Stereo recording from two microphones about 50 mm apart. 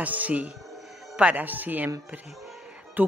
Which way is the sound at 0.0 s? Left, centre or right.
Right.